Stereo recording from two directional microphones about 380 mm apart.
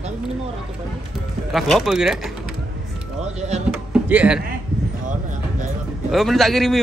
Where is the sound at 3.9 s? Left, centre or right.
Centre.